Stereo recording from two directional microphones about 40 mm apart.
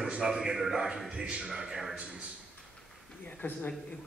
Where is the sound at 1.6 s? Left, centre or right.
Centre.